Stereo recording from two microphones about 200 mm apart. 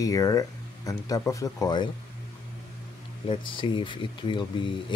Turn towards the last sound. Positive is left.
turn(degrees=25)  # may be behind; listen again after turning